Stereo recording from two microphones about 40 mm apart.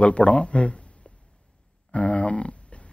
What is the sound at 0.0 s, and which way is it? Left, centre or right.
A man's voice, left.